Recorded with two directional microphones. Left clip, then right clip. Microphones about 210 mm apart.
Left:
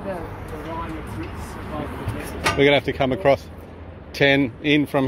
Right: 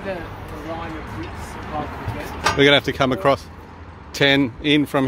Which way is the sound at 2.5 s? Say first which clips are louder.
Right 2 dB; 30° right (ahead or behind).